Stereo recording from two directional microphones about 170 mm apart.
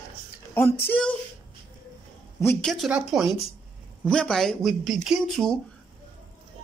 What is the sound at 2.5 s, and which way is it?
Speech, centre (ahead or behind).